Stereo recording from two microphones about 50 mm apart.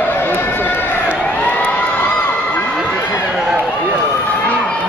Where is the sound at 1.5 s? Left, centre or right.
Left.